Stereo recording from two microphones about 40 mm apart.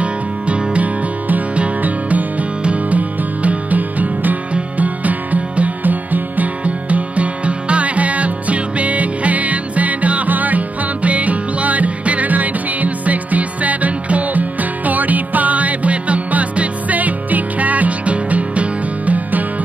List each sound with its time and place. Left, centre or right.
0.0 s music: right